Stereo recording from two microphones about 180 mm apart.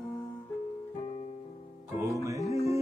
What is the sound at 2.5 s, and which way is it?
Music, 35° left (ahead or behind).